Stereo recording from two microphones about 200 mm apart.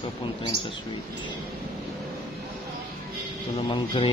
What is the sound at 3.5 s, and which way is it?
Speech, 25° left (ahead or behind).